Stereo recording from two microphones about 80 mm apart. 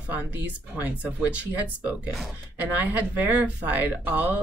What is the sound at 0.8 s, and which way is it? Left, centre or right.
Speech, centre.